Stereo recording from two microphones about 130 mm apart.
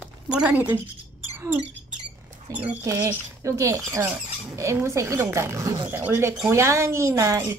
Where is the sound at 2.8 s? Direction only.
25° right (ahead or behind).